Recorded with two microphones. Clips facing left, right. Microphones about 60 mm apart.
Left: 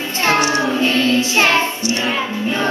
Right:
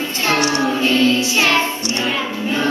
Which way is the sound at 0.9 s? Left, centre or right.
Left.